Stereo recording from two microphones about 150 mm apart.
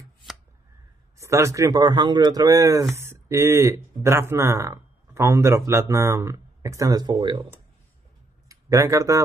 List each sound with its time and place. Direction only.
1.1 s a man's voice: 20° right (ahead or behind)
8.5 s speech: 20° right (ahead or behind)